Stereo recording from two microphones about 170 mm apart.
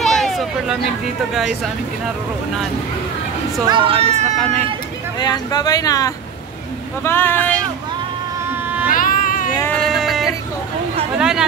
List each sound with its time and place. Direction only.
0.0 s a sound: centre (ahead or behind)
3.6 s speech: 30° right (ahead or behind)
5.2 s speech: 25° left (ahead or behind)
8.9 s a sound: 55° left (ahead or behind)
9.8 s music: centre (ahead or behind)
11.1 s speech: 5° right (ahead or behind)